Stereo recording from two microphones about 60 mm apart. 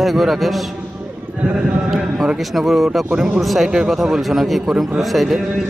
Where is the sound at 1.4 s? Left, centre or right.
Centre.